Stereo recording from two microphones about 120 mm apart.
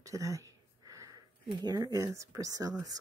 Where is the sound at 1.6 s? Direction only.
35° right (ahead or behind).